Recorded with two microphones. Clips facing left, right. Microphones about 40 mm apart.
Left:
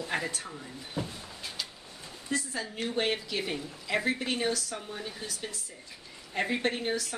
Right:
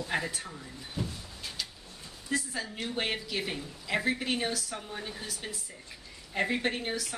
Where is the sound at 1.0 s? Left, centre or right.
Left.